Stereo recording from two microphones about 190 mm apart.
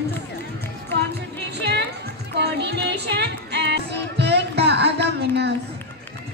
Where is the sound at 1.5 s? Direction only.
60° right (ahead or behind).